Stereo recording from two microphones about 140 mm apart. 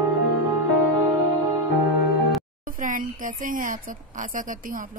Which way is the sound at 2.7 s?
75° right (ahead or behind).